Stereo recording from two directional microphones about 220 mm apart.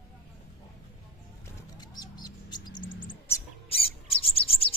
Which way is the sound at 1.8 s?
20° left (ahead or behind).